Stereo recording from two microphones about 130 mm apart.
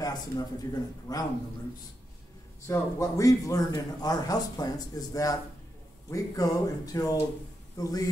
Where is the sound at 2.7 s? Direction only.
25° left (ahead or behind).